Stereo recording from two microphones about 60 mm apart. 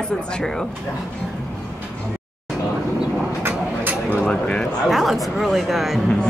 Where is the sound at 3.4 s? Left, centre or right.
Right.